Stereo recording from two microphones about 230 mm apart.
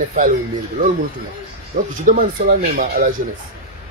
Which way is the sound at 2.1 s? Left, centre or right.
Right.